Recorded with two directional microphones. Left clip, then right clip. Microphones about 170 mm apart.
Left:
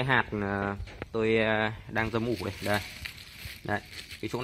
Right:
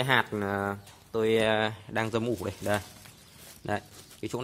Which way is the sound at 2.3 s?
10° right (ahead or behind).